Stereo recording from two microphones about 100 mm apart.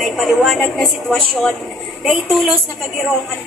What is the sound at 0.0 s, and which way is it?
Speech, centre (ahead or behind).